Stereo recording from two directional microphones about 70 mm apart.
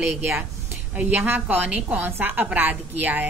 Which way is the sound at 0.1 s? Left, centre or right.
Right.